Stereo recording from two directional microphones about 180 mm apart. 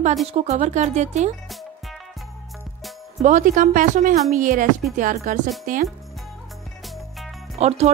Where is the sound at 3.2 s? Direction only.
45° right (ahead or behind).